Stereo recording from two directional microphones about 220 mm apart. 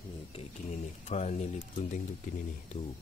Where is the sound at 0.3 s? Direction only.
30° left (ahead or behind).